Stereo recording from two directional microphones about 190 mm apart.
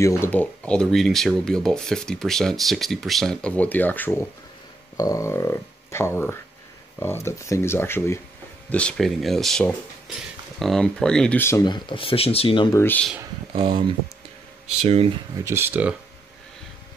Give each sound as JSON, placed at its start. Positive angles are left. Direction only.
{"t": 0.0, "sound": "speech", "side_deg": 10}
{"t": 12.7, "sound": "speech", "side_deg": 10}
{"t": 13.5, "sound": "speech", "side_deg": -25}
{"t": 15.4, "sound": "speech", "side_deg": -10}